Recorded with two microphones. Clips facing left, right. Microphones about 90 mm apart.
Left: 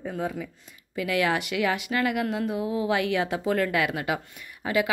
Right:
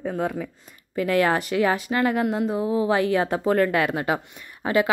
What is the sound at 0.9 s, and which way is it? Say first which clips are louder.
A woman's voice: right 4 dB; 40° right (ahead or behind).